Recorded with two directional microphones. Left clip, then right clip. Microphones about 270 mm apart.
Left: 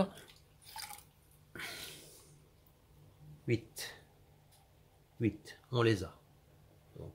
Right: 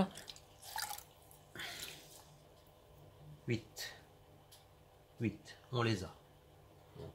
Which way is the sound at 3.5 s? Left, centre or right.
Left.